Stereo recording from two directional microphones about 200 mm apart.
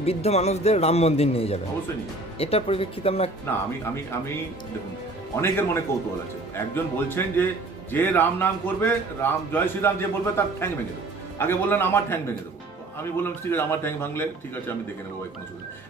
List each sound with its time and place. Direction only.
0.0 s a man's voice: 30° left (ahead or behind)
5.3 s a man's voice: 10° left (ahead or behind)
13.2 s a man's voice: 10° left (ahead or behind)